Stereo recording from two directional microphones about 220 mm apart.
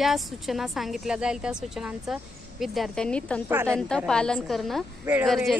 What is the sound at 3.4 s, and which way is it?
Speech, 10° right (ahead or behind).